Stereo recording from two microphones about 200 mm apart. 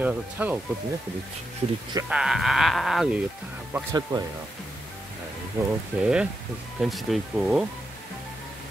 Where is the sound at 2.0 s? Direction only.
5° right (ahead or behind); by 4.2 s 20° right (ahead or behind).